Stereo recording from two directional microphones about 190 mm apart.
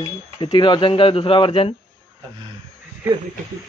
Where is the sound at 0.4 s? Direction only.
25° left (ahead or behind).